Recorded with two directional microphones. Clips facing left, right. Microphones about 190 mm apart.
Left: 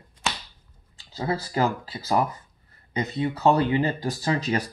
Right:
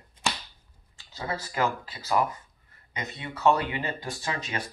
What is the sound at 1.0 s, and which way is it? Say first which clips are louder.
Speech: left 6 dB; 35° left (ahead or behind).